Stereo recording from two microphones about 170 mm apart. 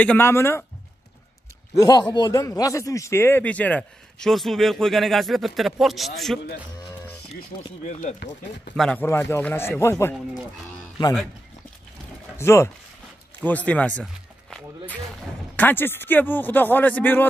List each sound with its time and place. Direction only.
0.0 s a man's voice: 10° left (ahead or behind)
1.8 s speech: 20° left (ahead or behind); by 6.4 s centre (ahead or behind)
7.3 s speech: 50° left (ahead or behind)
8.7 s speech: 5° left (ahead or behind)
9.0 s a man's voice: 15° left (ahead or behind)
12.4 s a man's voice: 15° left (ahead or behind)
15.5 s a man's voice: 10° left (ahead or behind)